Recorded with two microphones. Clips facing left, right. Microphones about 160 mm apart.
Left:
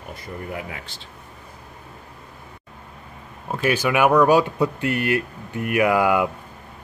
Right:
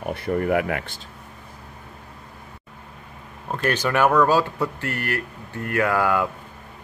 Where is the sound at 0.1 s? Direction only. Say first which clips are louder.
Right 11 dB; 65° right (ahead or behind).